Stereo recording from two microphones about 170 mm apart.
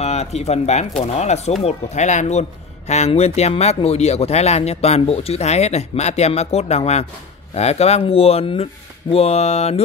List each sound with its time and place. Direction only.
0.0 s speech: 40° left (ahead or behind)